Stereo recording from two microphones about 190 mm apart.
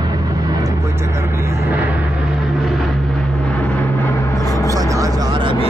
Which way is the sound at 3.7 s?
10° left (ahead or behind).